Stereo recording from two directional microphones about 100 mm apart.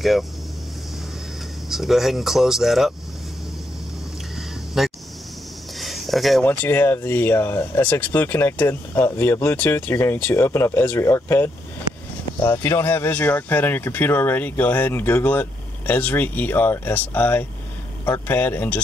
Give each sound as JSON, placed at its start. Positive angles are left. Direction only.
{"t": 1.7, "sound": "speech", "side_deg": -5}
{"t": 4.7, "sound": "a sound", "side_deg": -5}
{"t": 6.4, "sound": "speech", "side_deg": 15}